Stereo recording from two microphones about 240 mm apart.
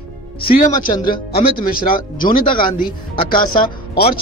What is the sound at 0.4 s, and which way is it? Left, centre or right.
A man's voice, left.